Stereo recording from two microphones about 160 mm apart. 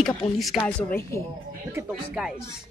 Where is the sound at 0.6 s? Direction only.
15° left (ahead or behind).